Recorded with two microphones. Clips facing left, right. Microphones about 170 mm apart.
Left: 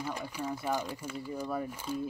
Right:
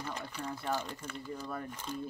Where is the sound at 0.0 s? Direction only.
10° left (ahead or behind).